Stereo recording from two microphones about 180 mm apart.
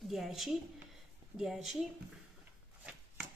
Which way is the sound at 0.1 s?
Centre (ahead or behind).